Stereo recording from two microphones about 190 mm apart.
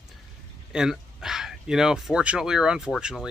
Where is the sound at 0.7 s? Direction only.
5° right (ahead or behind).